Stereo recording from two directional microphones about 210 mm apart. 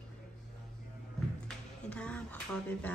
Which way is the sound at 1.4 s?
5° left (ahead or behind).